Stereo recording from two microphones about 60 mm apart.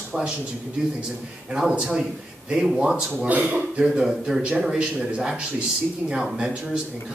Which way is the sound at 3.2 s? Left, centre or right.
Right.